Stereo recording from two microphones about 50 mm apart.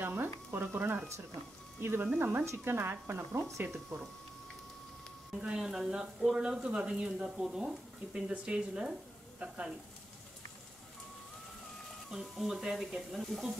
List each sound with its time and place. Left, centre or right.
0.0 s a sound: right
1.8 s speech: right
2.1 s speech: right
2.4 s a woman's voice: right
3.6 s speech: right
5.4 s speech: centre
12.1 s speech: centre